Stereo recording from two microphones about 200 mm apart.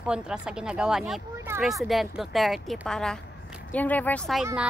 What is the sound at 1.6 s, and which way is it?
Speech, centre (ahead or behind).